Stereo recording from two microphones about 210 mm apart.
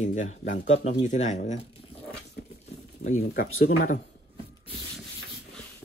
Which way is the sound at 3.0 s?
35° left (ahead or behind).